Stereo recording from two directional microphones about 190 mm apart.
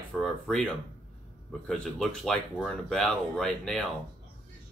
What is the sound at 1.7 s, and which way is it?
Speech, centre (ahead or behind).